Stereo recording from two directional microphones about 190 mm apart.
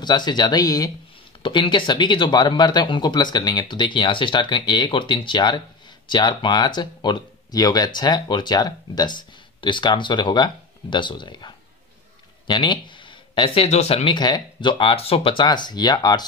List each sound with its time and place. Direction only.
0.0 s speech: 25° left (ahead or behind)